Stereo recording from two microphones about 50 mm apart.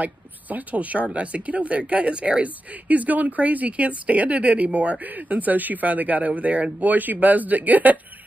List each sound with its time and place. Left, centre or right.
0.0 s speech: right